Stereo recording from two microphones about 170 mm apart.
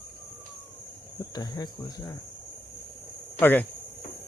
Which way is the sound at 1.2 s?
25° left (ahead or behind).